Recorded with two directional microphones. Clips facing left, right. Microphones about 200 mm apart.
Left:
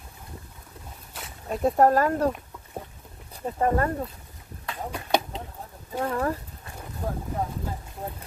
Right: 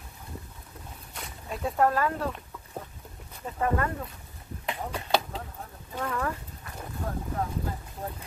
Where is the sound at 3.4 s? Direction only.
35° left (ahead or behind).